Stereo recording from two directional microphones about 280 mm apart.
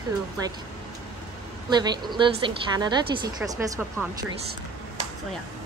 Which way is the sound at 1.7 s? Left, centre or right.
Centre.